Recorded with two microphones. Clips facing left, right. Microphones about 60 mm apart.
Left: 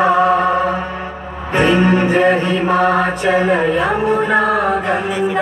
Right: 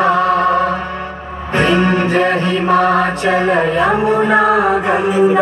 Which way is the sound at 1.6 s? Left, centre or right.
Centre.